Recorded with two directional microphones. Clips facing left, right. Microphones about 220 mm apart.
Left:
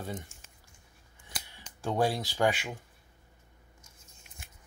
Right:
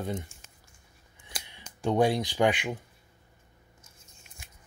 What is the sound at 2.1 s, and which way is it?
Speech, 15° right (ahead or behind).